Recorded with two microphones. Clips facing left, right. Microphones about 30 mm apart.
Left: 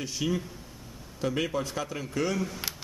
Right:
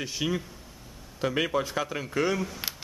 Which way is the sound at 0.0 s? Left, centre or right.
Centre.